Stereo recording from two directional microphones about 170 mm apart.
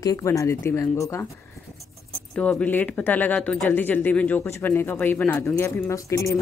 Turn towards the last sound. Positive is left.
turn(degrees=20)  # may be behind; listen again after turning